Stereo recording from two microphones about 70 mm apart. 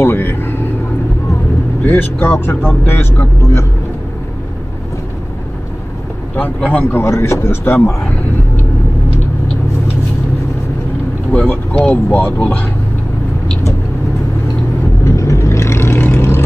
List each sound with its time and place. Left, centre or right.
0.0 s a sound: left
2.0 s speech: left
6.3 s speech: left
7.0 s speech: left
11.3 s speech: left
15.0 s vehicle: left